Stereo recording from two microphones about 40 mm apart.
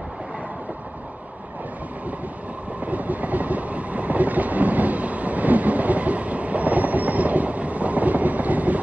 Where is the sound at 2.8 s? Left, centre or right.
Right.